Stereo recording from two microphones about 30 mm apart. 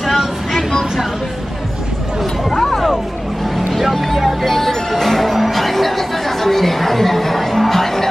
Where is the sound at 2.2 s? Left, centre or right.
Centre.